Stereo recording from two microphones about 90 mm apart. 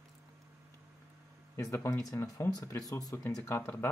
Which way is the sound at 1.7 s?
30° left (ahead or behind).